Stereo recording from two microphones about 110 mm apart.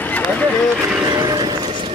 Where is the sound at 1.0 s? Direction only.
40° right (ahead or behind).